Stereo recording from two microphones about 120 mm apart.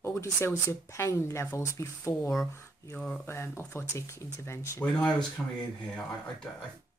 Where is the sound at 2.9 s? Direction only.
10° left (ahead or behind).